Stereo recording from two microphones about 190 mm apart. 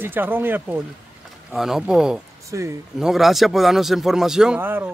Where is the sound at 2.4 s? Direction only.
15° right (ahead or behind).